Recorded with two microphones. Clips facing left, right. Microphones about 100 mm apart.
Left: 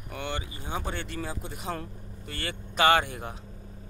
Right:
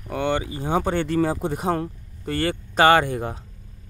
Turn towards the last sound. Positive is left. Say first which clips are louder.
# right 6 dB
turn(degrees=-40)  # may be behind; listen again after turning